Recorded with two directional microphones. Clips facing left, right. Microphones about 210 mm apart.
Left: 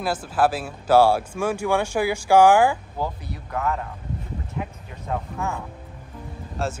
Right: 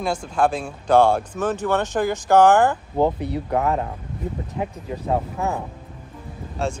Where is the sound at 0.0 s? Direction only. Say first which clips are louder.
Right 1 dB; 5° left (ahead or behind).